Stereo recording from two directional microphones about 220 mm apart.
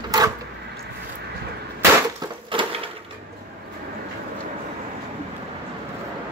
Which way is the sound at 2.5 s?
25° right (ahead or behind).